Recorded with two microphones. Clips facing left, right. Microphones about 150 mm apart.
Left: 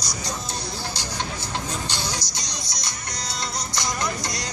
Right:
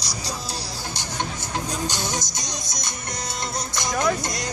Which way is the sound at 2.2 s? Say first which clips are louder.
Right 3 dB; 50° right (ahead or behind).